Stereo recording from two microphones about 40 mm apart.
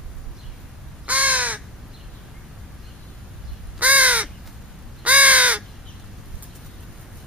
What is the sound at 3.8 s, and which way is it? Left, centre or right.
Crow, right.